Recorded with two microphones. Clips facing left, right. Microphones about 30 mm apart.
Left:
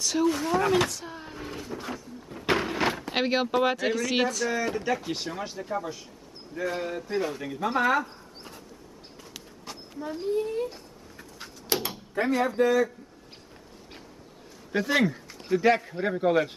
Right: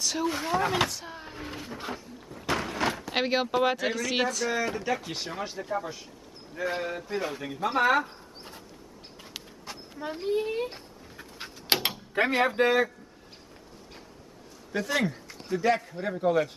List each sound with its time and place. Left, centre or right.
0.0 s speech: centre
1.8 s speech: right
2.5 s thunk: centre
3.2 s speech: centre; by 8.1 s right
9.9 s speech: right
11.1 s a sound: right
12.1 s speech: right
14.7 s a man's voice: centre